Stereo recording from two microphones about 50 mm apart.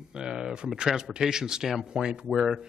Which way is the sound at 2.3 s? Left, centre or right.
Centre.